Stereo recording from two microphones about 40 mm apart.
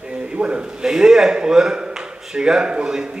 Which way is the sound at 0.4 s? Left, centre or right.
Right.